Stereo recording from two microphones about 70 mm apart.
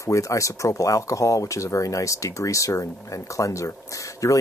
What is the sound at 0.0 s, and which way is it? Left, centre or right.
Speech, left.